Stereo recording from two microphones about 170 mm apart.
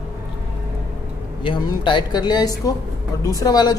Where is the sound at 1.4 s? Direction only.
30° left (ahead or behind).